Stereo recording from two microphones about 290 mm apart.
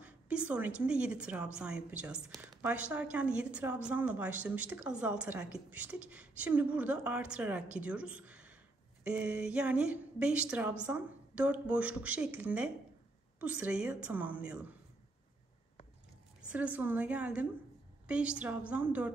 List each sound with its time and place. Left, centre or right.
0.0 s a woman's voice: centre
16.3 s a woman's voice: centre